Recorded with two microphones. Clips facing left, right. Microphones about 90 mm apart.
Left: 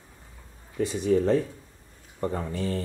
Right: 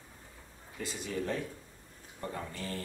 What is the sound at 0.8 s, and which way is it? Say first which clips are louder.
Speech: left 13 dB; 20° left (ahead or behind).